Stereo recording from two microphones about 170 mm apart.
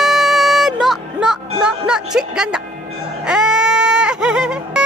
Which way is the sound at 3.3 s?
5° right (ahead or behind).